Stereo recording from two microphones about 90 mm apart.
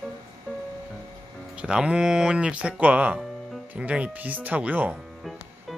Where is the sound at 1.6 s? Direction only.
10° right (ahead or behind).